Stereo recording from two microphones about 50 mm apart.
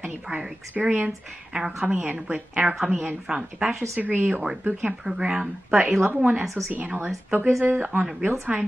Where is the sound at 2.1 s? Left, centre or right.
Centre.